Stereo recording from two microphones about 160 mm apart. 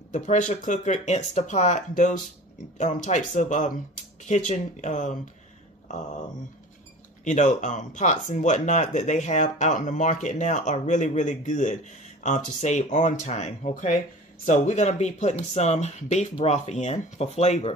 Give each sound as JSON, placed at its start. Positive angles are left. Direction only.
{"t": 0.1, "sound": "speech", "side_deg": 50}
{"t": 7.2, "sound": "speech", "side_deg": 50}